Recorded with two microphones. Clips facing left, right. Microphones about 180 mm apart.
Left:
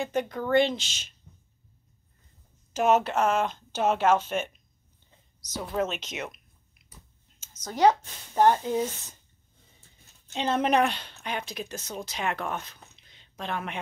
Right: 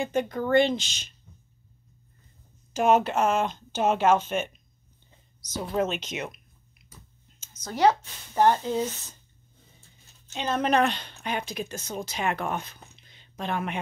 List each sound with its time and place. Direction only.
0.0 s speech: centre (ahead or behind)
2.7 s speech: centre (ahead or behind)
5.7 s speech: centre (ahead or behind)
7.3 s a sound: 15° left (ahead or behind)
8.4 s a woman's voice: 15° left (ahead or behind)
10.3 s a woman's voice: 25° left (ahead or behind); by 13.7 s 5° right (ahead or behind)